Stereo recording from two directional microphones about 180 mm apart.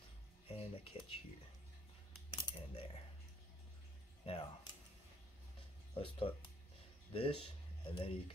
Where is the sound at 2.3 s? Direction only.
25° left (ahead or behind).